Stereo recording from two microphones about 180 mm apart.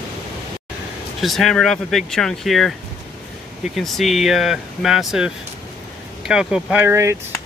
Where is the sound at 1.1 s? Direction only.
Centre (ahead or behind); by 7.2 s 15° right (ahead or behind).